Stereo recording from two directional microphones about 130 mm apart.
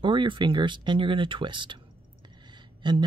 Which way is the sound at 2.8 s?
35° right (ahead or behind).